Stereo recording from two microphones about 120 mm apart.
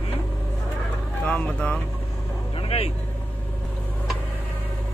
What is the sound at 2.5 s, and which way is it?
Vehicle, 55° left (ahead or behind).